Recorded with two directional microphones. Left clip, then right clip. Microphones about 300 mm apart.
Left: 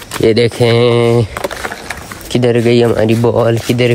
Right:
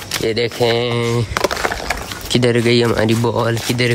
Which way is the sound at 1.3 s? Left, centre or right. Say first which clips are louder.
Right 2 dB; centre.